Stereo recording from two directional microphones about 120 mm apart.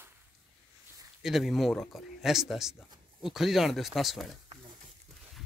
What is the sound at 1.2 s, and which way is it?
Speech, centre (ahead or behind).